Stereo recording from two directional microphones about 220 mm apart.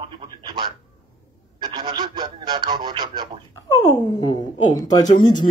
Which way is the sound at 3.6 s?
15° left (ahead or behind).